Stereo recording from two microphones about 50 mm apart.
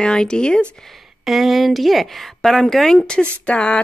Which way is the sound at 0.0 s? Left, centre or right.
Centre.